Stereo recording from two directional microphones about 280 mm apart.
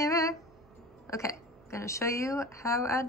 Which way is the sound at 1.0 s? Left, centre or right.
Centre.